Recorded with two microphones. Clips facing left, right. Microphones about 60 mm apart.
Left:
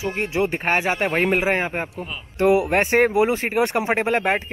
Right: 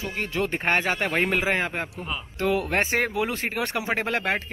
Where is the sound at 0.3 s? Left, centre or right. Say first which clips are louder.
Left 2 dB; left.